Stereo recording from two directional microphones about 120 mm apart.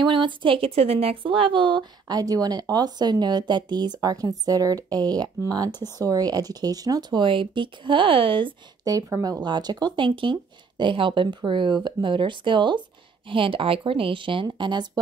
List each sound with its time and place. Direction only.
0.0 s speech: 40° right (ahead or behind)
8.8 s speech: 30° right (ahead or behind)